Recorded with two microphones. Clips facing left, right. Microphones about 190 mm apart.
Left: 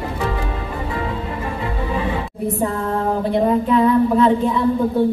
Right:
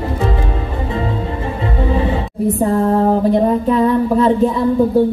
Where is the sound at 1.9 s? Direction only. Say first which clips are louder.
Right 5 dB; 30° right (ahead or behind).